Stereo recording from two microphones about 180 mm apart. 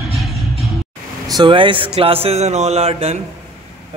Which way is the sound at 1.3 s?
25° right (ahead or behind).